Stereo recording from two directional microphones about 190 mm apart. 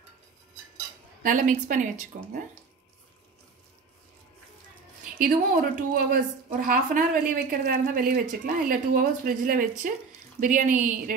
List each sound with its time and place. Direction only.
1.2 s a woman's voice: 45° right (ahead or behind)
5.2 s a woman's voice: 50° right (ahead or behind)